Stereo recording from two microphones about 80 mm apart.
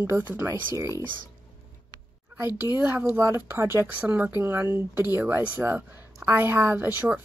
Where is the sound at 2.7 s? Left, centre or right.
Right.